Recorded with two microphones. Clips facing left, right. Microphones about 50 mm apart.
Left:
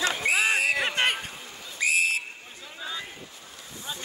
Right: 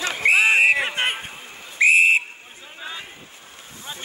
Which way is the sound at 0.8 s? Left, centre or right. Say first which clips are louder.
Right 1 dB; right.